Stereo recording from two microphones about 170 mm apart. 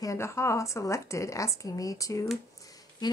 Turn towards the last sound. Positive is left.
turn(degrees=25)  # may be behind; listen again after turning